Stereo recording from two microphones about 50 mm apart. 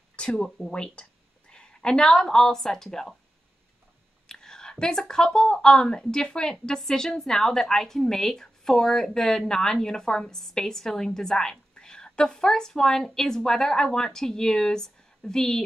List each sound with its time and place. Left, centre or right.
0.1 s speech: centre
4.3 s a woman's voice: centre